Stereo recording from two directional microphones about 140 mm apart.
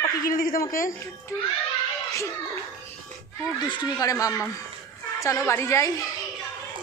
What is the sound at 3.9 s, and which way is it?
A woman's voice, 25° left (ahead or behind).